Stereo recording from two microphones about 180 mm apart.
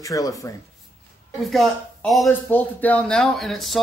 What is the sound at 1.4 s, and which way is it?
A man's voice, centre (ahead or behind).